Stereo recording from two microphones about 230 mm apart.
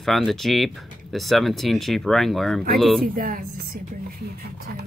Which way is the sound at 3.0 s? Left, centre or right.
Right.